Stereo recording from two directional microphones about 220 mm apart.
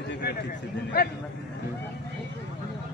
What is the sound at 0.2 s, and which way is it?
Speech, 45° left (ahead or behind).